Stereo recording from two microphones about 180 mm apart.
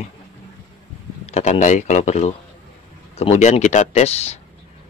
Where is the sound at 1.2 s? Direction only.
35° left (ahead or behind).